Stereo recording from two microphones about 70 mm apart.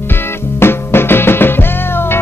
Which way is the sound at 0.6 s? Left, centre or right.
Left.